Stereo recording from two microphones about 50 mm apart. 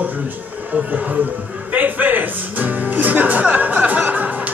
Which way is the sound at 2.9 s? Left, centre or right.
Right.